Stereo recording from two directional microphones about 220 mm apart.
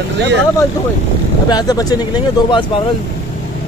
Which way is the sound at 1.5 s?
15° left (ahead or behind).